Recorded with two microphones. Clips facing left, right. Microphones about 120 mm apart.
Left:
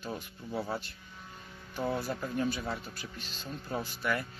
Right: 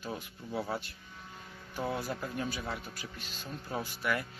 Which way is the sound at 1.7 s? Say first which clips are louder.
Left 2 dB; 10° right (ahead or behind).